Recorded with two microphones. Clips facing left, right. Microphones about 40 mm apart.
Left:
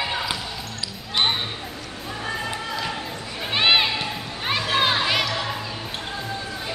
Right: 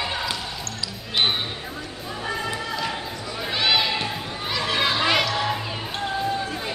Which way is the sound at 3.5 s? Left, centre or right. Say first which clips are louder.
Left 3 dB; left.